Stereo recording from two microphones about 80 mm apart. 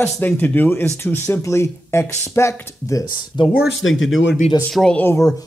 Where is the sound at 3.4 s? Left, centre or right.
Left.